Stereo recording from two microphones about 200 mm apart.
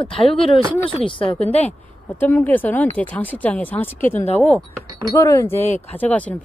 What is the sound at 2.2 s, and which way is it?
Speech, 10° left (ahead or behind).